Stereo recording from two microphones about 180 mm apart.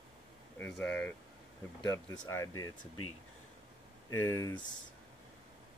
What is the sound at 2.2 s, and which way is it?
Speech, 15° left (ahead or behind).